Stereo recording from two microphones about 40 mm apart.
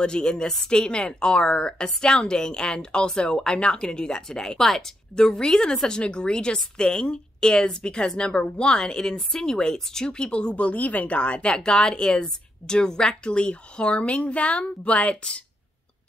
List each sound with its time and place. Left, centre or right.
0.0 s a woman's voice: left